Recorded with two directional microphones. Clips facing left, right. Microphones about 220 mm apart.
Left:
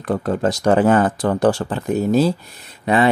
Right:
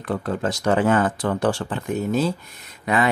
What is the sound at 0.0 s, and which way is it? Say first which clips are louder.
Speech: left 5 dB; 40° left (ahead or behind).